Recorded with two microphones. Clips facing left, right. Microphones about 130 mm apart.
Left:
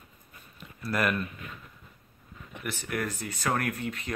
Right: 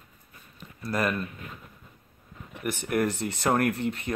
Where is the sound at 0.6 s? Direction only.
5° left (ahead or behind).